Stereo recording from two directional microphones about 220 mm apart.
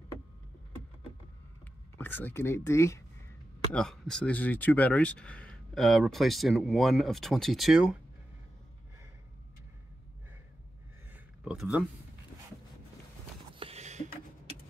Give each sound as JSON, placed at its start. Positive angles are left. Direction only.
{"t": 1.6, "sound": "speech", "side_deg": 10}
{"t": 3.7, "sound": "speech", "side_deg": 0}
{"t": 11.4, "sound": "speech", "side_deg": -5}
{"t": 13.6, "sound": "a sound", "side_deg": -30}